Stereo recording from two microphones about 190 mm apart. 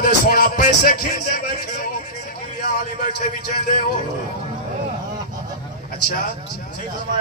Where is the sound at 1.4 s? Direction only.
50° left (ahead or behind).